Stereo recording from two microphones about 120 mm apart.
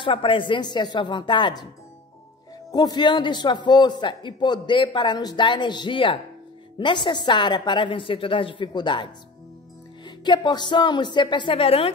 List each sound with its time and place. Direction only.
0.0 s a man's voice: 45° left (ahead or behind)
2.7 s a man's voice: 35° left (ahead or behind); by 11.9 s 50° left (ahead or behind)